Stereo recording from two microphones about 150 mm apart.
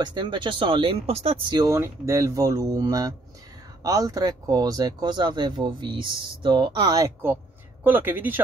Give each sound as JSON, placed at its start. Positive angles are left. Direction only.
{"t": 0.0, "sound": "speech", "side_deg": -30}
{"t": 1.7, "sound": "speech", "side_deg": -20}
{"t": 7.8, "sound": "speech", "side_deg": -15}